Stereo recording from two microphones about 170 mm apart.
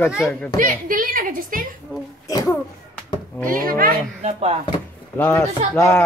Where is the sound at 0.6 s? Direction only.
55° right (ahead or behind).